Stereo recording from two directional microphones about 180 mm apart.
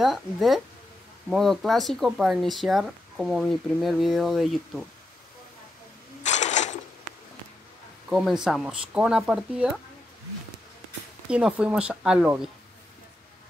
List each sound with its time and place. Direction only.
0.0 s speech: centre (ahead or behind)
6.2 s mechanisms: 40° left (ahead or behind)
8.1 s speech: centre (ahead or behind)
11.2 s speech: 5° right (ahead or behind)